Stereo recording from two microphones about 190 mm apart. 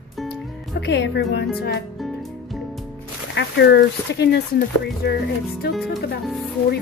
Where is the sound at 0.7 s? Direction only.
65° left (ahead or behind).